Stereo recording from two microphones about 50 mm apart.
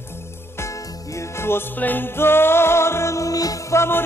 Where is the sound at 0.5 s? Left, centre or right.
Left.